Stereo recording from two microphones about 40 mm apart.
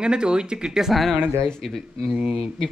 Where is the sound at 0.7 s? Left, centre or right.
Centre.